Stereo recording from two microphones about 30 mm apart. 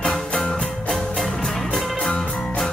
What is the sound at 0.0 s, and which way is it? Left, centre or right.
Music, left.